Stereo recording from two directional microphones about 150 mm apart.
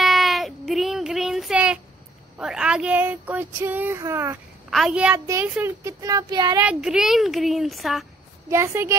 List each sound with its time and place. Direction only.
0.0 s child singing: centre (ahead or behind); by 4.4 s 15° right (ahead or behind)
4.6 s a child's voice: centre (ahead or behind)
5.1 s speech: 20° right (ahead or behind)
6.6 s speech: 5° right (ahead or behind)
8.5 s child singing: 20° right (ahead or behind)